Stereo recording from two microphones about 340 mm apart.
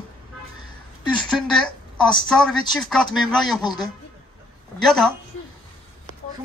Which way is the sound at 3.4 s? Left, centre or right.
Centre.